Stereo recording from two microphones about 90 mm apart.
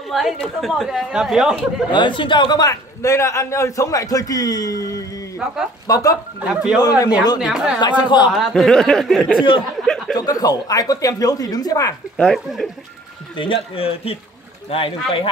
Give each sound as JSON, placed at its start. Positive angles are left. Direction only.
{"t": 0.1, "sound": "speech", "side_deg": 0}
{"t": 1.9, "sound": "a man's voice", "side_deg": 60}
{"t": 2.7, "sound": "a man's voice", "side_deg": 35}
{"t": 6.4, "sound": "speech", "side_deg": -10}
{"t": 6.8, "sound": "speech", "side_deg": 45}
{"t": 7.3, "sound": "speech", "side_deg": -5}
{"t": 8.0, "sound": "a man's voice", "side_deg": 55}
{"t": 8.3, "sound": "speech", "side_deg": 0}
{"t": 10.1, "sound": "speech", "side_deg": 45}
{"t": 13.4, "sound": "speech", "side_deg": 80}